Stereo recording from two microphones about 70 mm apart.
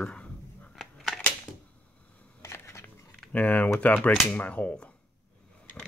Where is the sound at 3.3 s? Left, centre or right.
Left.